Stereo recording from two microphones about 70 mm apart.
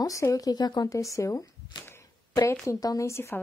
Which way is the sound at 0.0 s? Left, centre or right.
Left.